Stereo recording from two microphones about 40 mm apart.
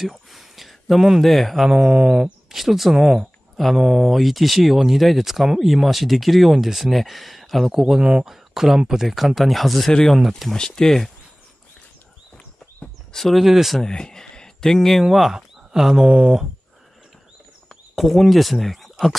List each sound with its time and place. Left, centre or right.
0.0 s speech: centre
1.7 s mantra: centre
2.5 s speech: centre
3.5 s speech: centre
3.8 s speech: centre
7.7 s mantra: centre
8.3 s speech: centre
10.5 s speech: centre
13.1 s speech: centre
13.4 s speech: centre
13.8 s speech: centre
15.0 s speech: centre
16.0 s mantra: right
17.9 s speech: centre